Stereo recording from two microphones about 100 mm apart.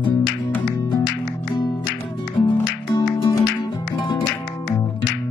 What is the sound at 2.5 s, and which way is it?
Music, 50° left (ahead or behind).